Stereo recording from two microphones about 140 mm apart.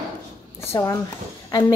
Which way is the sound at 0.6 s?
20° left (ahead or behind).